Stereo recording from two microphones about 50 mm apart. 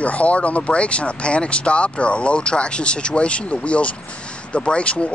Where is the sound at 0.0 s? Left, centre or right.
Left.